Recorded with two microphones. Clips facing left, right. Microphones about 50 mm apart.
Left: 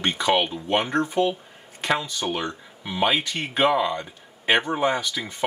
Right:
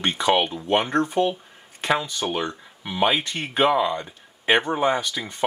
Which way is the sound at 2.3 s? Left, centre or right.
Centre.